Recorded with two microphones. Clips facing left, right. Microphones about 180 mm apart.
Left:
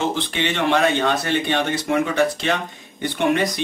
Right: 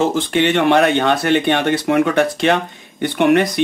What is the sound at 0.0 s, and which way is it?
Speech, 45° right (ahead or behind).